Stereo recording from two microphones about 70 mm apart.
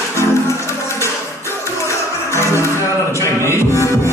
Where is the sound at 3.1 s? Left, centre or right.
Left.